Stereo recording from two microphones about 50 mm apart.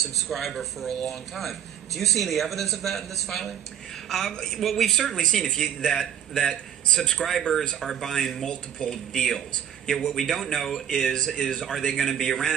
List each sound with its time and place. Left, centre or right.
0.3 s a man's voice: centre